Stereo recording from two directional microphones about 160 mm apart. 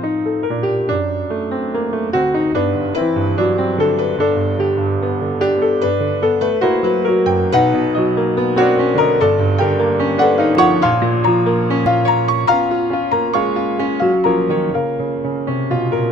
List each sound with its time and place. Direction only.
6.6 s music: centre (ahead or behind)
14.0 s music: centre (ahead or behind)